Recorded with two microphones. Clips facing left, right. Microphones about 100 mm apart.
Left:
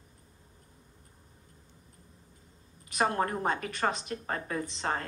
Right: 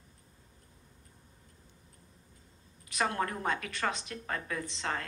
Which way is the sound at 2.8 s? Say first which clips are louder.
Left 3 dB; 40° left (ahead or behind).